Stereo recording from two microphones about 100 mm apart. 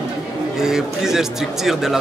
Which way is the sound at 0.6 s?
5° right (ahead or behind).